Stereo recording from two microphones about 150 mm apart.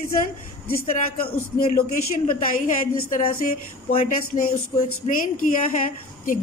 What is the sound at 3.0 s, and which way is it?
Speech, 65° left (ahead or behind).